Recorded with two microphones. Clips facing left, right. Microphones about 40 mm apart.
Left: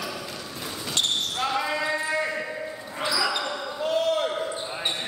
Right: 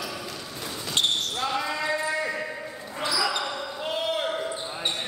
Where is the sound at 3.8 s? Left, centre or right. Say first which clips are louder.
Left 5 dB; right.